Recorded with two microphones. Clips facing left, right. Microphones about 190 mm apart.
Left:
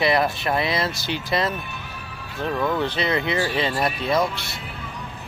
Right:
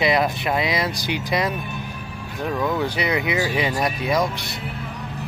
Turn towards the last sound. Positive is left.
turn(degrees=-15)  # may be behind; listen again after turning